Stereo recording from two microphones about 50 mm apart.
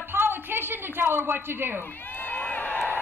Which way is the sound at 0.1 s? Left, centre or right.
Right.